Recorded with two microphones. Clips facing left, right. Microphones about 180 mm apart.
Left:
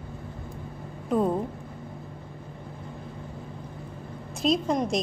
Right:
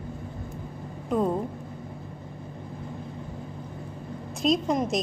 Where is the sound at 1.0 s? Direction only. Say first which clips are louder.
Left 1 dB; centre (ahead or behind).